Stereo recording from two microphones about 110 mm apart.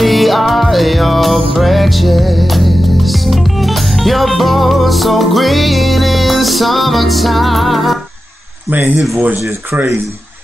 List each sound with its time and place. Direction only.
0.0 s music: centre (ahead or behind)
8.6 s speech: 15° right (ahead or behind)